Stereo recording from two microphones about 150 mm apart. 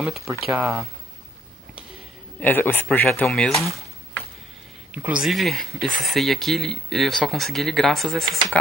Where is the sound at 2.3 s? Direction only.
10° left (ahead or behind).